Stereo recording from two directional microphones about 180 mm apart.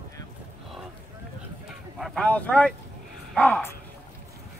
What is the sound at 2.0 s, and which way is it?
Speech, 5° left (ahead or behind).